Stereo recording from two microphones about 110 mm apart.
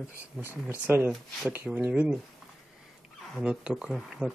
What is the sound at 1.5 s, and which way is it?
Speech, 15° right (ahead or behind).